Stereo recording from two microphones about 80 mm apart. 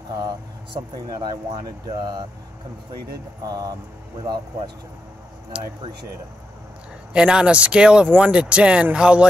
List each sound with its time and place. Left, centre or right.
0.9 s speech: right
3.4 s speech: right
4.2 s speech: right
5.5 s speech: centre
7.1 s speech: centre